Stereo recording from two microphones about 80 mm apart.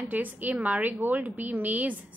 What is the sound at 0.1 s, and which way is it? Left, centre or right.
A woman's voice, right.